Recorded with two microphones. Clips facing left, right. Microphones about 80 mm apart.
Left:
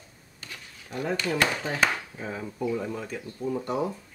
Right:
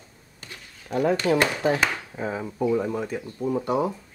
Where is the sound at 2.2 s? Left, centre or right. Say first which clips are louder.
Right 5 dB; right.